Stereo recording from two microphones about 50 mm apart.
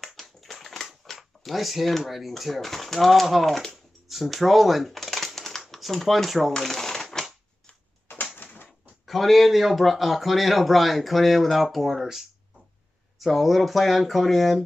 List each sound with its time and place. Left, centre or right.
0.0 s tap: centre
1.1 s speech: centre
5.8 s shuffling cards: centre
8.4 s typewriter: left
9.0 s speech: centre